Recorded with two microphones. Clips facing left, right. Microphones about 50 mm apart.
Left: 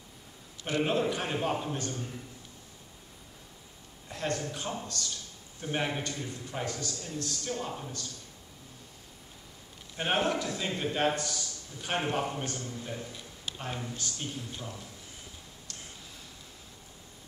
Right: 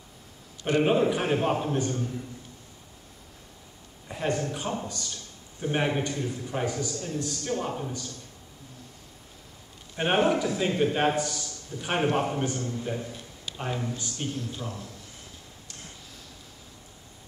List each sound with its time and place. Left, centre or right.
0.7 s a man's voice: centre
4.1 s a man's voice: centre
9.9 s a man's voice: centre
14.3 s speech: centre